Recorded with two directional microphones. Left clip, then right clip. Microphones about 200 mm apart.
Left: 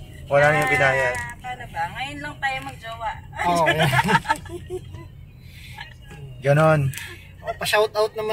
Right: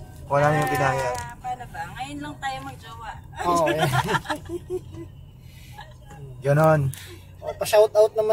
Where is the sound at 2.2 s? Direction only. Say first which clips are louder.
Left 6 dB; 15° right (ahead or behind).